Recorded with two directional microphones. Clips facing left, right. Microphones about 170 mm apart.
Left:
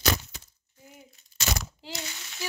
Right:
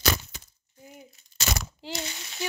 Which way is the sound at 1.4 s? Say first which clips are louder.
Right 1 dB; 30° right (ahead or behind).